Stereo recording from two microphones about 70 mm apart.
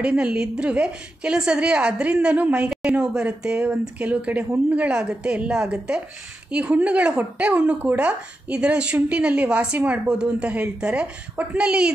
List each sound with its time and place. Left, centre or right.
0.0 s speech: centre